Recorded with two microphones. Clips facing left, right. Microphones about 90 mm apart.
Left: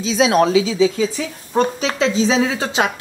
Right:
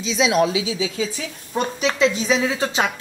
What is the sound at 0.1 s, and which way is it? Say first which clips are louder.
A woman's voice: left 4 dB; 40° left (ahead or behind).